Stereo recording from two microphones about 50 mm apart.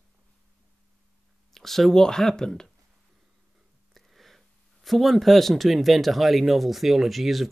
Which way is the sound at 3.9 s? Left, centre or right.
Centre.